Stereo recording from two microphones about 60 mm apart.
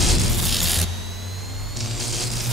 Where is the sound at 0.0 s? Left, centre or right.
Centre.